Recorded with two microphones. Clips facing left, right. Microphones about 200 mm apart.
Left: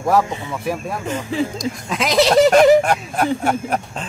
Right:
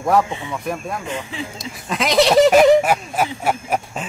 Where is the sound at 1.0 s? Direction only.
40° left (ahead or behind).